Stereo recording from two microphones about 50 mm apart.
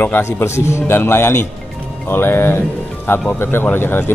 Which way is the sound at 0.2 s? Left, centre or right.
Left.